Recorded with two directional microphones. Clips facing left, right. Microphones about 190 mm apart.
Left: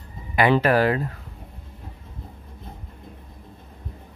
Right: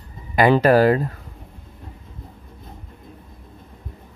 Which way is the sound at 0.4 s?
40° right (ahead or behind).